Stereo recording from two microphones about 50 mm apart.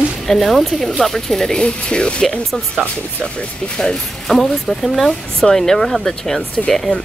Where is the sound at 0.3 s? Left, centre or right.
Centre.